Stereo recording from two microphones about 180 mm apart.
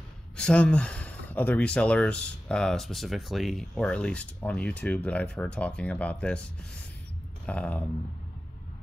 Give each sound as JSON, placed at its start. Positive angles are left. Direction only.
{"t": 0.4, "sound": "speech", "side_deg": 5}
{"t": 7.4, "sound": "speech", "side_deg": 5}